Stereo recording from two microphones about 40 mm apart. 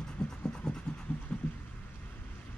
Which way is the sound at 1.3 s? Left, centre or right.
Left.